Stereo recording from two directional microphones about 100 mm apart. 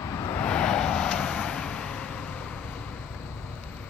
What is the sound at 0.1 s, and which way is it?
Vehicle, 25° left (ahead or behind).